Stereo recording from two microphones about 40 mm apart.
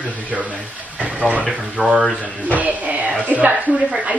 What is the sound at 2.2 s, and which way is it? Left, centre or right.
Speech, right.